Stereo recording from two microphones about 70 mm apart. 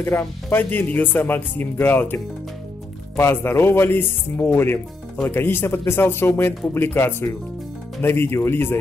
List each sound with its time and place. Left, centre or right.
0.1 s speech: left
3.2 s speech: left